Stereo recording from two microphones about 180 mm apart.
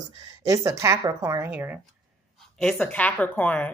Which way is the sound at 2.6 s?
5° left (ahead or behind).